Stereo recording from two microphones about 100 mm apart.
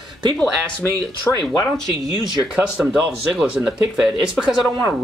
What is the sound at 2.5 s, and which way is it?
Speech, 10° right (ahead or behind).